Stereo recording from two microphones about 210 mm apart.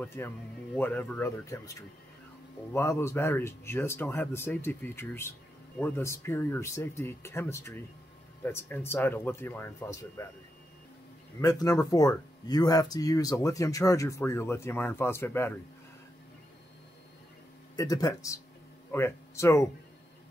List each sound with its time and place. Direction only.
0.0 s speech: 10° left (ahead or behind)
11.4 s speech: 15° left (ahead or behind)
17.7 s speech: 15° left (ahead or behind)